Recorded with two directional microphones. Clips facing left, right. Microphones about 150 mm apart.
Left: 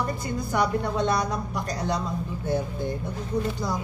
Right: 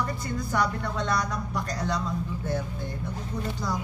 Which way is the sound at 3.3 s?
20° left (ahead or behind).